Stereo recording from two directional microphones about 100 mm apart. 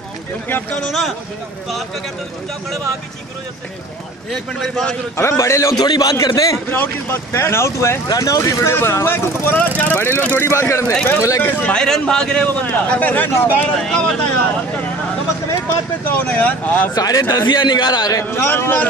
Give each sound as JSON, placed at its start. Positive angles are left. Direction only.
{"t": 0.5, "sound": "speech", "side_deg": 20}
{"t": 4.3, "sound": "a man's voice", "side_deg": 0}
{"t": 5.1, "sound": "speech", "side_deg": 30}
{"t": 5.9, "sound": "speech", "side_deg": 40}
{"t": 6.7, "sound": "speech", "side_deg": 20}
{"t": 11.6, "sound": "a man's voice", "side_deg": 10}
{"t": 13.7, "sound": "a man's voice", "side_deg": 5}
{"t": 16.1, "sound": "a man's voice", "side_deg": 20}
{"t": 16.9, "sound": "speech", "side_deg": 40}
{"t": 17.5, "sound": "a man's voice", "side_deg": 50}
{"t": 18.2, "sound": "speech", "side_deg": 20}